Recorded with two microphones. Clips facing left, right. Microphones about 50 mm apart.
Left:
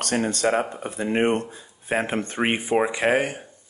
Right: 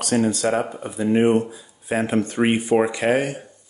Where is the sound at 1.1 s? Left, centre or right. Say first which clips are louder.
Right 4 dB; left.